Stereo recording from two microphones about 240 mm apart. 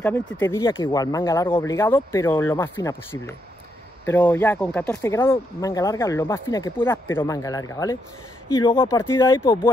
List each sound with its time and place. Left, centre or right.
0.0 s speech: centre
0.6 s speech: centre